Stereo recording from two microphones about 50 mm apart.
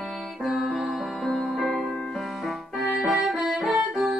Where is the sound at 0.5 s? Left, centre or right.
Centre.